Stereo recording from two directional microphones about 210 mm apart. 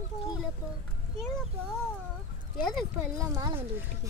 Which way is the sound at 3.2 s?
15° right (ahead or behind).